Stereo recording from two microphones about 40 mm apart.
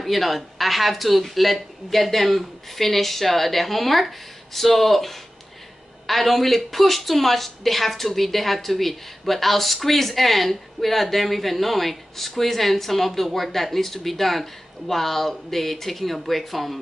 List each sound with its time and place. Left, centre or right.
0.0 s speech: centre